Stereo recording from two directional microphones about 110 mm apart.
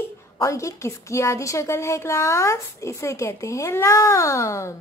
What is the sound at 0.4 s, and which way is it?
A woman's voice, 30° left (ahead or behind).